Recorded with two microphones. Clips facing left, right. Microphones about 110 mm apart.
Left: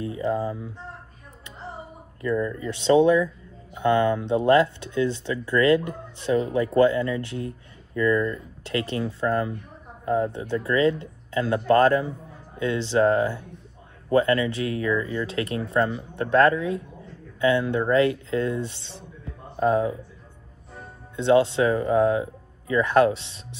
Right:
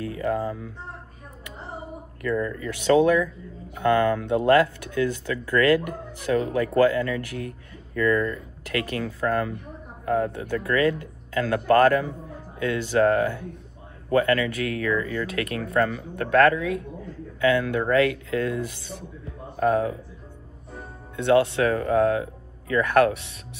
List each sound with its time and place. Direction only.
0.0 s speech: 25° left (ahead or behind)
2.2 s speech: 20° left (ahead or behind)
21.2 s speech: 20° left (ahead or behind)